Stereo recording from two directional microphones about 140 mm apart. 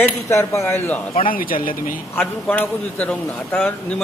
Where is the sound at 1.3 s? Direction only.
90° left.